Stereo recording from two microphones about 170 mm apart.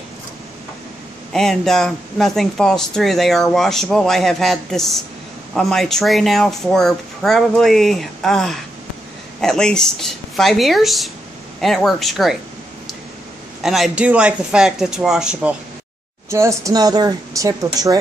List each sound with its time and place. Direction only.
1.3 s speech: 5° left (ahead or behind)
13.6 s speech: centre (ahead or behind)
16.3 s a woman's voice: 20° right (ahead or behind)